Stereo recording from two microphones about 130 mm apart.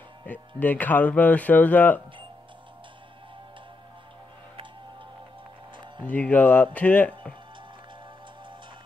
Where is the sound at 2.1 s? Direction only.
40° right (ahead or behind).